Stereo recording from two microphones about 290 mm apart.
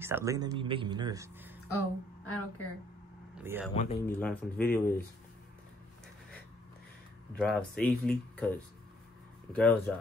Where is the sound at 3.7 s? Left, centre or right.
Left.